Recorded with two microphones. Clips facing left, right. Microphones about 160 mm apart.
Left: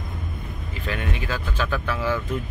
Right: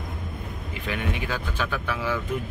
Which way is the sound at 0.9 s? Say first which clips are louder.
Even; 15° right (ahead or behind).